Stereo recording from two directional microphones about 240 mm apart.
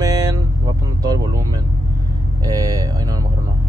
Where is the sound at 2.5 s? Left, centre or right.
Centre.